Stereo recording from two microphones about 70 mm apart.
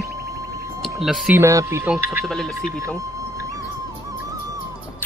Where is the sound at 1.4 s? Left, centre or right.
Right.